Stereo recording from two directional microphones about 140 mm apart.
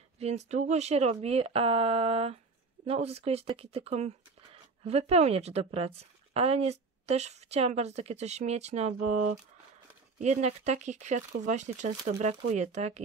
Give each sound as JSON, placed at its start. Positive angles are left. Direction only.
{"t": 0.2, "sound": "a woman's voice", "side_deg": -50}